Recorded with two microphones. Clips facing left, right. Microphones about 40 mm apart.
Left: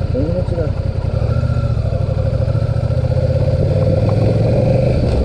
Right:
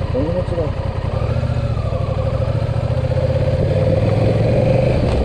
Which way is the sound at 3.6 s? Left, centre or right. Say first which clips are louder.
Even; right.